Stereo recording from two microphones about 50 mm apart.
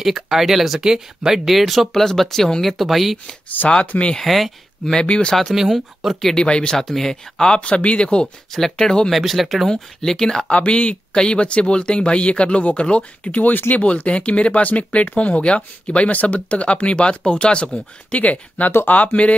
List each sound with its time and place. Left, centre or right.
0.0 s speech: centre
3.6 s speech: left
4.2 s speech: centre
5.0 s speech: left
5.3 s speech: centre
6.3 s speech: centre
6.8 s speech: centre
8.5 s speech: centre
9.1 s speech: centre
10.7 s speech: left
13.8 s speech: left
18.9 s speech: left